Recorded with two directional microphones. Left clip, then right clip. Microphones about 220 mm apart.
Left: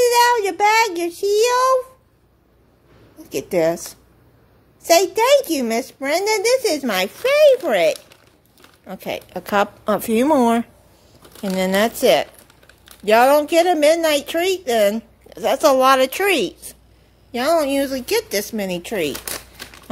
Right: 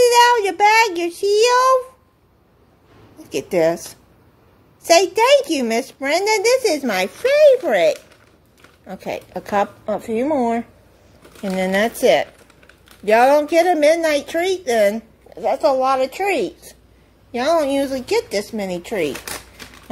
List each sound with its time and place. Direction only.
0.0 s child singing: 10° left (ahead or behind)
3.2 s a woman's voice: 5° left (ahead or behind); by 10.6 s 25° left (ahead or behind)
11.4 s a woman's voice: 10° left (ahead or behind)
17.3 s a woman's voice: 10° left (ahead or behind)